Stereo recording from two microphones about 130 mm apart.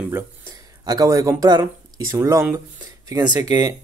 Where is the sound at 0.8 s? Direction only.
25° right (ahead or behind).